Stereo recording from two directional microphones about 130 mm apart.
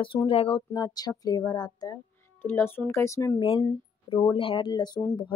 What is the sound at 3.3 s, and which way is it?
A woman's voice, 40° left (ahead or behind).